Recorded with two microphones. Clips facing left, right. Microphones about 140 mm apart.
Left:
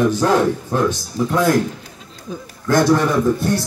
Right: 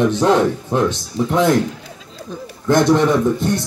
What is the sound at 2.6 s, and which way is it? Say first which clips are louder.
Speech: right 2 dB; 20° right (ahead or behind).